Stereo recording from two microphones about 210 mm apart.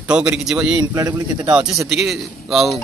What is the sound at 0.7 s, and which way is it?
Speech, 15° right (ahead or behind).